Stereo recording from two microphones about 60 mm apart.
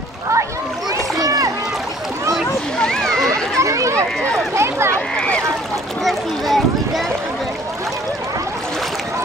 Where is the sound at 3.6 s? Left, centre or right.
Right.